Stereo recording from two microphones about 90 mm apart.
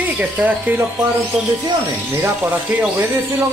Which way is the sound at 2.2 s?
20° right (ahead or behind).